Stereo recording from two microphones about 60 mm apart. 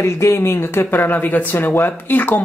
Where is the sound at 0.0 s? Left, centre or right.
Left.